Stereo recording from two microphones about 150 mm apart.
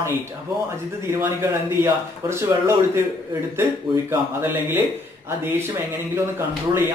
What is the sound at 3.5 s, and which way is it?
Speech, 15° right (ahead or behind).